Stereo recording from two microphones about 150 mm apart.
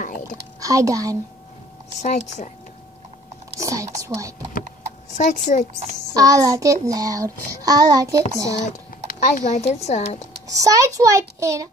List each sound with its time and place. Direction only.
0.0 s speech: 65° left (ahead or behind)
0.6 s speech: 20° right (ahead or behind)
2.0 s speech: 50° left (ahead or behind)
3.5 s speech: 20° right (ahead or behind)
5.1 s speech: 55° left (ahead or behind)
6.1 s child singing: 25° right (ahead or behind)
8.6 s speech: 55° left (ahead or behind)
10.5 s child singing: 25° right (ahead or behind)